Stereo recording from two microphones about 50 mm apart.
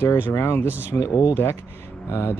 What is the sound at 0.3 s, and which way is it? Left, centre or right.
Speech, left.